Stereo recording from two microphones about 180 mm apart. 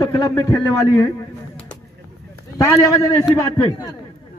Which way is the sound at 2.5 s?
15° left (ahead or behind).